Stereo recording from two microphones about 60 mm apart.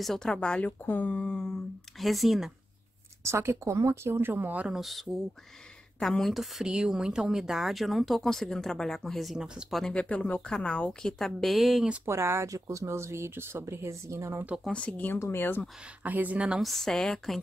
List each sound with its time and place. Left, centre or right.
0.0 s speech: centre
0.7 s speech: left; by 1.6 s centre
2.0 s speech: centre
3.3 s speech: right
4.6 s speech: centre
9.9 s speech: left; by 11.9 s centre
12.1 s speech: right
12.4 s speech: right
14.7 s speech: centre
15.1 s speech: left
16.0 s speech: right
16.5 s speech: centre